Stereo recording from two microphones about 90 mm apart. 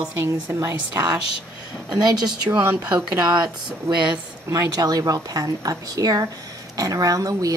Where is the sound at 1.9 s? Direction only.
45° right (ahead or behind).